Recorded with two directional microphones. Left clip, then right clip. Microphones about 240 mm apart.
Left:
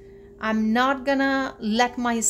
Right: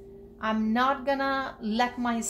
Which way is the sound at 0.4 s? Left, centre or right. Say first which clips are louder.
Left 4 dB; left.